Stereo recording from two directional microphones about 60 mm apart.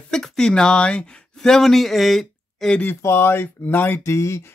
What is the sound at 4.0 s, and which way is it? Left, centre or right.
Speech, left.